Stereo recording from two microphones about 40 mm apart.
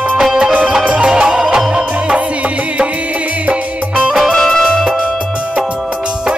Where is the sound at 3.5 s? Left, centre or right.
Right.